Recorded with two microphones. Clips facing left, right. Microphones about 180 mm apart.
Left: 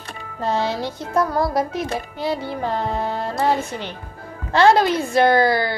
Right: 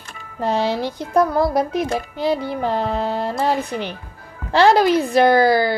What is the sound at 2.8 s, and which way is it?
Speech, 20° left (ahead or behind).